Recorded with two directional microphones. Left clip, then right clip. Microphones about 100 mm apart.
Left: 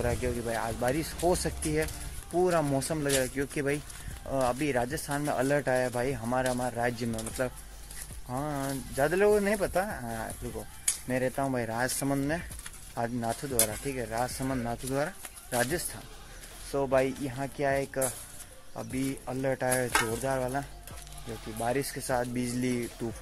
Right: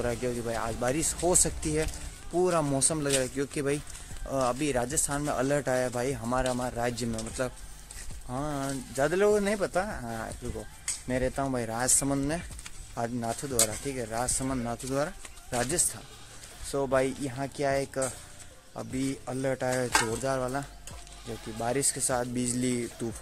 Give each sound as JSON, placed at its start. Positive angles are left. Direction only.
{"t": 0.0, "sound": "speech", "side_deg": -30}
{"t": 20.1, "sound": "speech", "side_deg": -35}